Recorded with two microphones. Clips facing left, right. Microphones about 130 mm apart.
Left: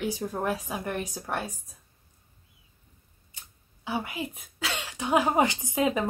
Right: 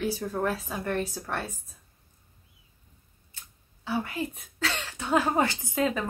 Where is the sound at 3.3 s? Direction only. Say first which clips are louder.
Even; 15° left (ahead or behind).